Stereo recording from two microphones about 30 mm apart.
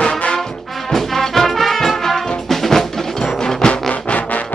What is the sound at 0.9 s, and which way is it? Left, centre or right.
Music, centre.